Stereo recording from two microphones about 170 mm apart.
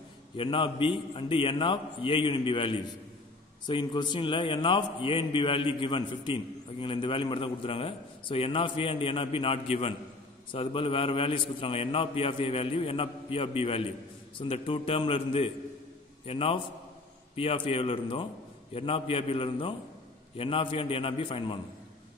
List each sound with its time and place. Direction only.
0.4 s a man's voice: 30° left (ahead or behind)